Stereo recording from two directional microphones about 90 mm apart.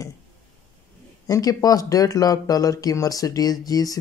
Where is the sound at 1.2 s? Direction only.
45° left (ahead or behind).